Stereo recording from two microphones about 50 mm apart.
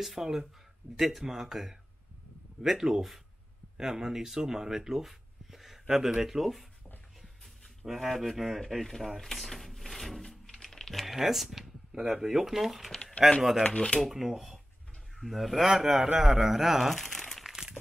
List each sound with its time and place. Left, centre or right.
0.0 s a man's voice: centre
7.8 s a man's voice: centre
17.4 s crumpling: centre